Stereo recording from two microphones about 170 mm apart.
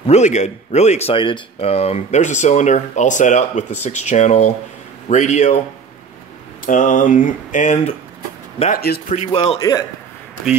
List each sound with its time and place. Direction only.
0.0 s speech: 40° left (ahead or behind)
6.6 s speech: 50° left (ahead or behind)
8.7 s speech: 70° left (ahead or behind)
9.1 s a man's voice: 40° left (ahead or behind)
9.6 s a man's voice: 20° left (ahead or behind)